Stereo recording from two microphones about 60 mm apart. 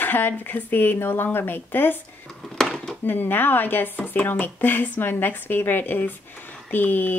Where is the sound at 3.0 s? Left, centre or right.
Left.